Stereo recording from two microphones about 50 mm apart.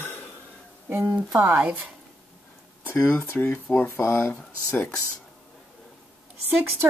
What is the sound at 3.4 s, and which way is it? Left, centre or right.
Speech, left.